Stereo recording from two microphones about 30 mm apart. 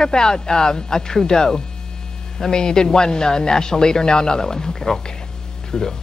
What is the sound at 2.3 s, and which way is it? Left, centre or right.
A man's voice, centre.